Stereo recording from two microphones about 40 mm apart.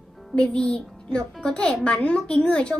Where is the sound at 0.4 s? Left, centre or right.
Left.